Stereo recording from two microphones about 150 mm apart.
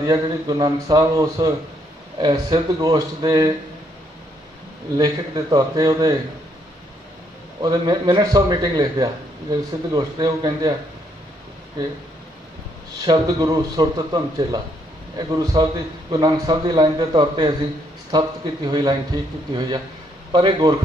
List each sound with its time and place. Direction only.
0.0 s a man's voice: 25° right (ahead or behind)
4.9 s a man's voice: 25° right (ahead or behind)
7.6 s a man's voice: 25° right (ahead or behind)
13.0 s a man's voice: 25° right (ahead or behind)